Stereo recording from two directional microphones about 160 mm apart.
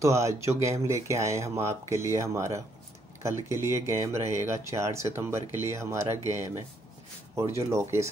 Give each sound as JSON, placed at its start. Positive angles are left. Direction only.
{"t": 0.0, "sound": "speech", "side_deg": -20}
{"t": 7.3, "sound": "speech", "side_deg": -15}